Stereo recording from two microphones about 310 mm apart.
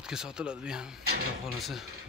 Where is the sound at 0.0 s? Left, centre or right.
Centre.